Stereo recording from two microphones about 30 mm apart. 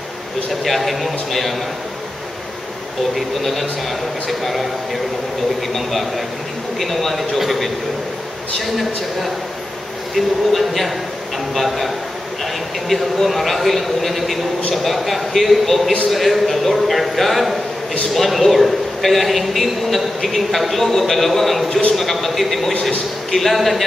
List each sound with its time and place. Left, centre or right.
0.7 s a man's voice: centre
4.3 s a man's voice: centre
5.8 s a man's voice: centre